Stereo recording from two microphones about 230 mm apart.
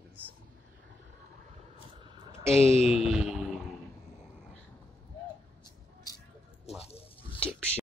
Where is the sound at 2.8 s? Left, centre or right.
Centre.